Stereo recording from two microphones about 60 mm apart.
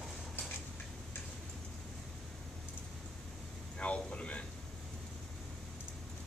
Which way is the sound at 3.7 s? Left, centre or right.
Centre.